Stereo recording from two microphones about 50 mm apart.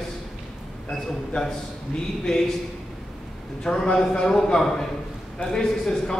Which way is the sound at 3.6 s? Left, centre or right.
Centre.